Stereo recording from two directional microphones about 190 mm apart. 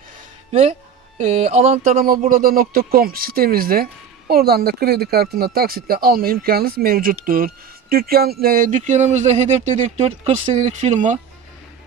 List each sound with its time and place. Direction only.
0.5 s speech: 35° right (ahead or behind)